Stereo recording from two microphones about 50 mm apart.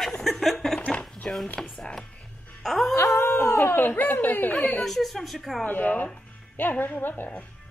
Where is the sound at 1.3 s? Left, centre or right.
Centre.